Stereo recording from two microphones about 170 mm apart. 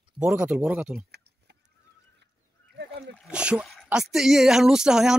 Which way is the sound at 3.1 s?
5° right (ahead or behind).